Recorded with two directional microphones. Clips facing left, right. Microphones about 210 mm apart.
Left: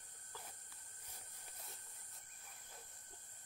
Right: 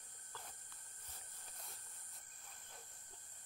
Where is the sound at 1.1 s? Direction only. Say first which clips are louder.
Left 1 dB; 10° left (ahead or behind).